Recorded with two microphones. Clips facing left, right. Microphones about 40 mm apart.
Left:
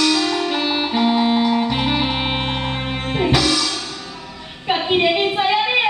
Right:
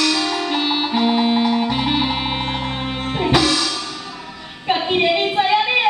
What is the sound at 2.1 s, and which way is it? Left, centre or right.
Music, centre.